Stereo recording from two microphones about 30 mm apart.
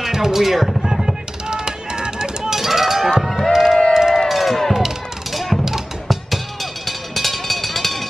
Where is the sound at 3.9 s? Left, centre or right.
Centre.